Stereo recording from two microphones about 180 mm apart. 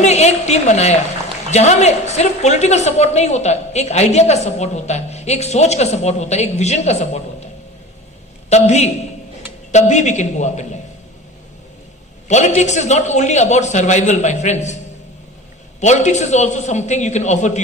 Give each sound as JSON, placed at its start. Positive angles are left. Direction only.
{"t": 0.0, "sound": "a woman's voice", "side_deg": 40}
{"t": 8.5, "sound": "a woman's voice", "side_deg": 40}
{"t": 12.3, "sound": "a woman's voice", "side_deg": 40}
{"t": 15.8, "sound": "a woman's voice", "side_deg": 40}